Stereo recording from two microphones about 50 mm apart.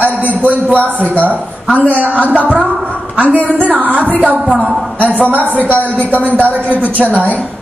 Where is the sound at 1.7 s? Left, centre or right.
Right.